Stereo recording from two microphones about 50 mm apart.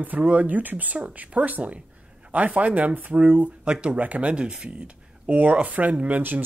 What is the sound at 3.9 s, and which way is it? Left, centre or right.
Speech, right.